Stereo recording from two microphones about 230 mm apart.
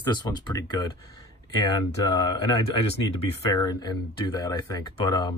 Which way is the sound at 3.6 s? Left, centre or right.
Centre.